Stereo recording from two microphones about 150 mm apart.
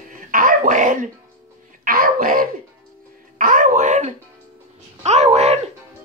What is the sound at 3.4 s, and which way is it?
Music, 60° right (ahead or behind).